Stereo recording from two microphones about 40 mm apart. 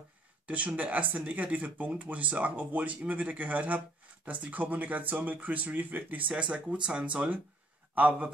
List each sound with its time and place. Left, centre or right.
0.5 s speech: right
6.3 s a man's voice: right